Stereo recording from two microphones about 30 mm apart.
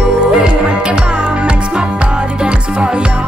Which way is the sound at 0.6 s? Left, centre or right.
Right.